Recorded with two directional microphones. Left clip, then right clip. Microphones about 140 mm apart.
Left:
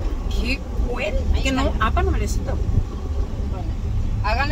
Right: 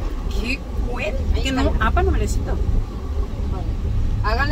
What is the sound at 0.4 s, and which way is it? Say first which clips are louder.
Speech: even; 5° left (ahead or behind).